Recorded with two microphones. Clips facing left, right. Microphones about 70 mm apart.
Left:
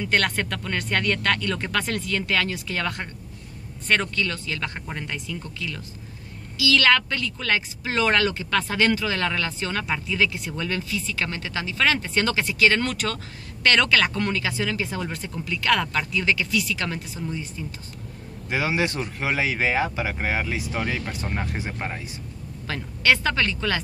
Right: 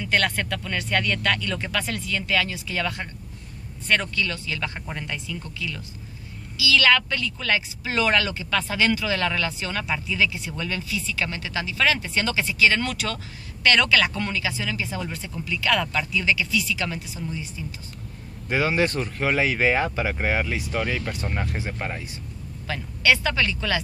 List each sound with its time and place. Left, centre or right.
0.0 s speech: left
4.7 s speech: centre
6.6 s speech: left
18.5 s speech: centre
22.7 s speech: left